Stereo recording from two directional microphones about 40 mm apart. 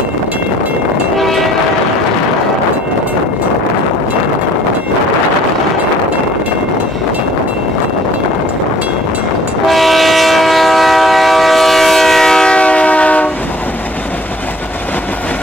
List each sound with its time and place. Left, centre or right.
1.1 s train horn: centre
9.7 s train: centre
12.5 s train: left